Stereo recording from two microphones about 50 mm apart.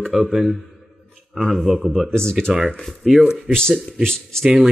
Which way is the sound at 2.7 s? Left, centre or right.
Centre.